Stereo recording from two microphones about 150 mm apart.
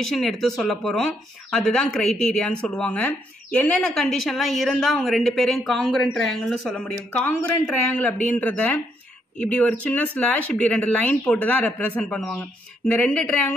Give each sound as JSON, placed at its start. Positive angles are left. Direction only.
{"t": 0.0, "sound": "speech", "side_deg": 0}